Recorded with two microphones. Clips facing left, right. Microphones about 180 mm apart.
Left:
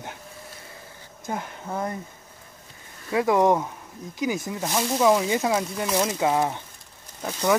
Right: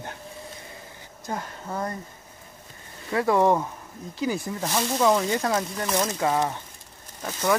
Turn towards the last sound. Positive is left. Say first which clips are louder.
# left 1 dB
turn(degrees=10)  # may be behind; listen again after turning